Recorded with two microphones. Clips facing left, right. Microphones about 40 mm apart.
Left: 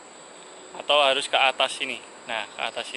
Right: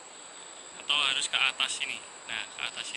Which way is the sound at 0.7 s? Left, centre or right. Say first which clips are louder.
Left 8 dB; centre.